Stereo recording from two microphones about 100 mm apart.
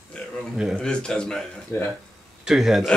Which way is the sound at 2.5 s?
5° right (ahead or behind).